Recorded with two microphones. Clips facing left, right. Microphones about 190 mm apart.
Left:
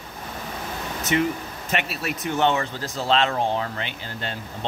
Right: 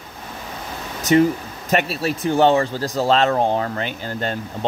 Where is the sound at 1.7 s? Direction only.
35° right (ahead or behind).